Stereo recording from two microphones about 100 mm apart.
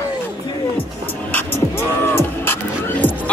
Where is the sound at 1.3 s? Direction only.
25° left (ahead or behind).